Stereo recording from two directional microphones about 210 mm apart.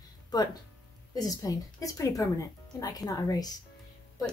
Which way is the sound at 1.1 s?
15° left (ahead or behind).